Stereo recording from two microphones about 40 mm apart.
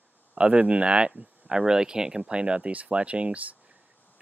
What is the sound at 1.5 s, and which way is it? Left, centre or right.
Speech, centre.